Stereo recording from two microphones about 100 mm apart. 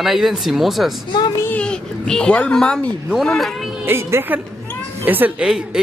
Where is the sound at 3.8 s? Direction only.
20° right (ahead or behind).